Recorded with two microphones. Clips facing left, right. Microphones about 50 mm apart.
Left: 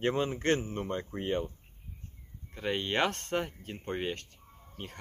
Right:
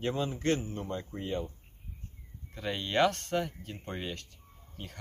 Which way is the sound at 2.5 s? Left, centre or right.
Left.